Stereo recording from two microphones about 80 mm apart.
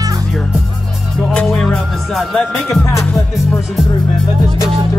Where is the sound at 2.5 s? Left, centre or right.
Centre.